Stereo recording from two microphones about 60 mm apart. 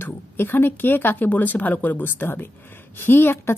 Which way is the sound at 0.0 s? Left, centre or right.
Left.